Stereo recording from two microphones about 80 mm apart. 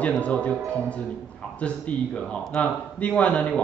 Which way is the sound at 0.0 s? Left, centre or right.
Centre.